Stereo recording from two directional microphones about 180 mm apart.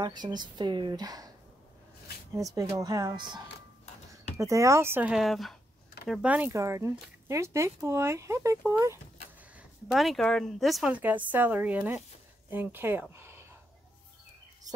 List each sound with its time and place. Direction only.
0.0 s speech: 25° right (ahead or behind)
2.3 s speech: 20° right (ahead or behind)
9.6 s speech: centre (ahead or behind)